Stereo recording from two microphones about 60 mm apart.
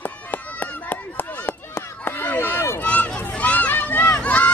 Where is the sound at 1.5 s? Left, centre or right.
Left.